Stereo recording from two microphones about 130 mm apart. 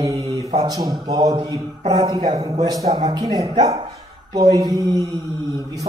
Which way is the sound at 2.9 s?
35° right (ahead or behind).